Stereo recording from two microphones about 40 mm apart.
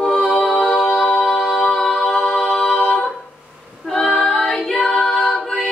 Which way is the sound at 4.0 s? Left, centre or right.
Centre.